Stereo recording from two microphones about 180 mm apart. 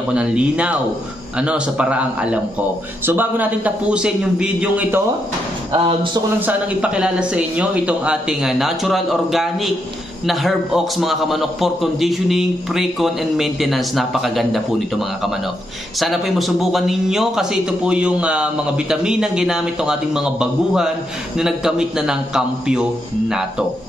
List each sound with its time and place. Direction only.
0.1 s a man's voice: 5° right (ahead or behind)
5.7 s speech: 30° right (ahead or behind)
6.4 s a man's voice: 5° right (ahead or behind)